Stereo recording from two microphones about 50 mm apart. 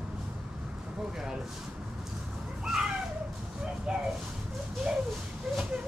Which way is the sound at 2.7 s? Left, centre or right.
Centre.